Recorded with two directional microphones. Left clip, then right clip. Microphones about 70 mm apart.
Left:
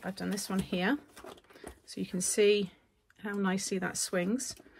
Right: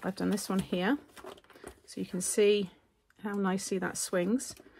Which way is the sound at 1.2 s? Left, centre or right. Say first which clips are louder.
Right 1 dB; centre.